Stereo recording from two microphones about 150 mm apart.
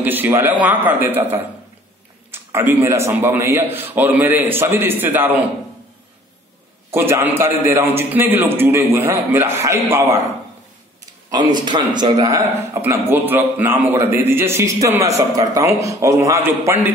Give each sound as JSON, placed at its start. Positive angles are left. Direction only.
{"t": 0.0, "sound": "a man's voice", "side_deg": -10}
{"t": 6.9, "sound": "a man's voice", "side_deg": -15}
{"t": 11.6, "sound": "a man's voice", "side_deg": -30}